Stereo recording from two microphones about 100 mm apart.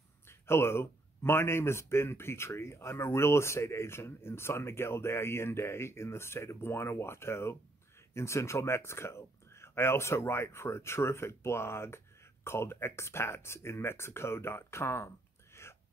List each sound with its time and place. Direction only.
0.3 s speech: 25° left (ahead or behind)